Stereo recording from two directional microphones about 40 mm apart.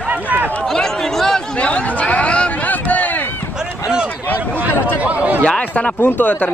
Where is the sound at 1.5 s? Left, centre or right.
Left.